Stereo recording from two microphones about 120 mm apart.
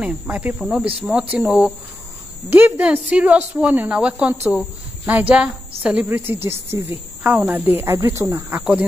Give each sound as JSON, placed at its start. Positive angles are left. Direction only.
{"t": 0.0, "sound": "a woman's voice", "side_deg": -10}